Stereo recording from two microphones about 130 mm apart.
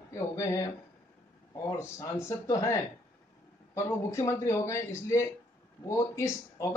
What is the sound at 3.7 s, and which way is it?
Speech, 20° left (ahead or behind).